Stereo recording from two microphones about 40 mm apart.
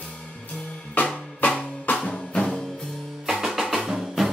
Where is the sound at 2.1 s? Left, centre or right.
Left.